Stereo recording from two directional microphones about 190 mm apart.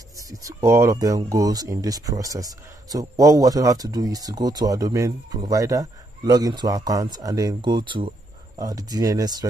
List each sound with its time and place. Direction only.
0.3 s speech: 20° right (ahead or behind)